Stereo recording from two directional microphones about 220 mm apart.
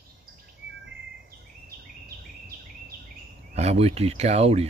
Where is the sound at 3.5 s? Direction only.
30° right (ahead or behind).